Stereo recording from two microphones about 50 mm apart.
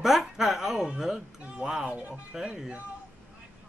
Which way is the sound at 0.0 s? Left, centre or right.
Centre.